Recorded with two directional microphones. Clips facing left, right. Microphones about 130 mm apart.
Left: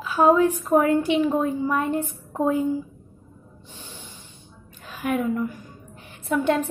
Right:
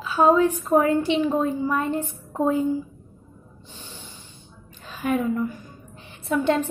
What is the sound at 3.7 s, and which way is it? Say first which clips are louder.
Snort: even; 10° left (ahead or behind).